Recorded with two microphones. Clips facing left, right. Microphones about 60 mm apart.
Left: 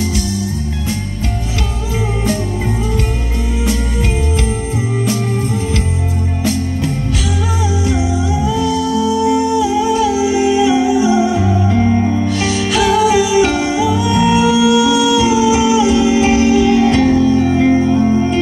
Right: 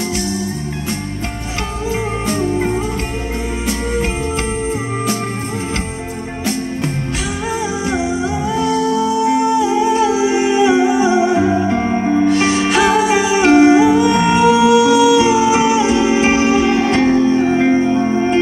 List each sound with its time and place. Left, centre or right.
7.9 s music: right